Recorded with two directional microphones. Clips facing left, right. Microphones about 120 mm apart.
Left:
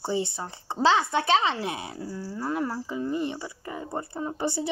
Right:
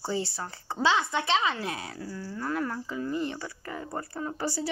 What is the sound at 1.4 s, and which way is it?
Speech, 25° left (ahead or behind).